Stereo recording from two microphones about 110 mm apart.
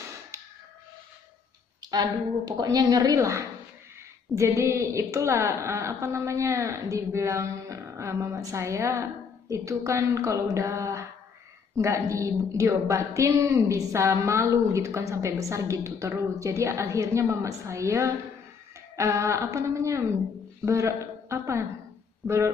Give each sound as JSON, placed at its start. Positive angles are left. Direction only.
{"t": 1.8, "sound": "a woman's voice", "side_deg": -40}